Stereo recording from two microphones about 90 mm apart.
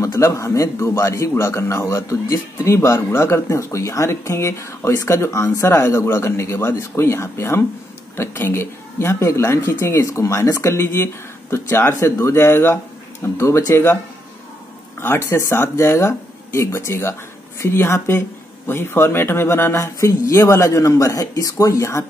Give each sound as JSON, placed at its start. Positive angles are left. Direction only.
{"t": 0.0, "sound": "a man's voice", "side_deg": 35}
{"t": 11.9, "sound": "a man's voice", "side_deg": 35}
{"t": 15.0, "sound": "a man's voice", "side_deg": 25}